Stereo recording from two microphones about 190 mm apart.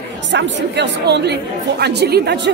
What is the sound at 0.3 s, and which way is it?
A woman's voice, 65° right (ahead or behind).